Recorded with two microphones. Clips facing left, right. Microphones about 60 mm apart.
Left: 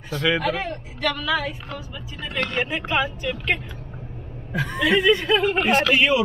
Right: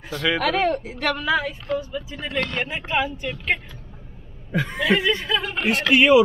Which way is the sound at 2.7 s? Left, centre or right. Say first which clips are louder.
Left 1 dB; centre.